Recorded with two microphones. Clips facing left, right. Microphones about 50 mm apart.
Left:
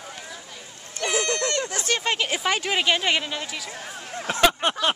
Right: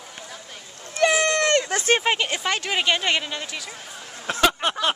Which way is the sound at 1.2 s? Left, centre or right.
Right.